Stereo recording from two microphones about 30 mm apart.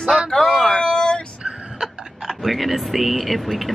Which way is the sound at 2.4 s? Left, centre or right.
Centre.